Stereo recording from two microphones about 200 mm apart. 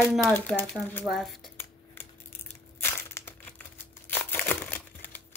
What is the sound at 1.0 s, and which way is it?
Speech, centre (ahead or behind).